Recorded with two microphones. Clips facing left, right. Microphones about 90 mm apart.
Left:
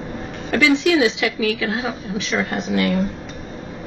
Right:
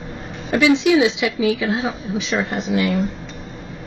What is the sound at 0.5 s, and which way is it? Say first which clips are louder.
Speech: right 2 dB; 20° right (ahead or behind).